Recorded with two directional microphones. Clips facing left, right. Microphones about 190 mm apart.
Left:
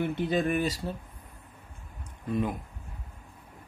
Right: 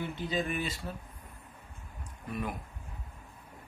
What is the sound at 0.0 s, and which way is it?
Speech, 55° left (ahead or behind).